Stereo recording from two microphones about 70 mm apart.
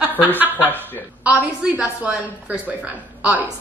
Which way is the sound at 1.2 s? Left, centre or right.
Centre.